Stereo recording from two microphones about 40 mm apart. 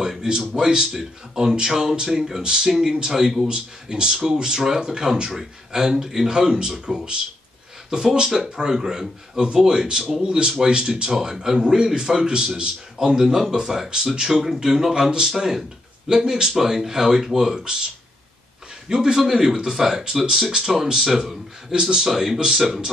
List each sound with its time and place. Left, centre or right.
0.0 s a sound: centre
0.6 s speech: centre
3.4 s speech: centre
9.4 s speech: centre
18.9 s speech: centre